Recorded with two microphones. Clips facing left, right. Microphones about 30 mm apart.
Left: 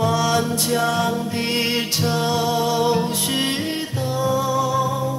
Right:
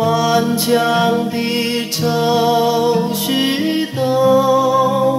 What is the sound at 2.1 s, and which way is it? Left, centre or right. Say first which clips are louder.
Music: right 8 dB; centre.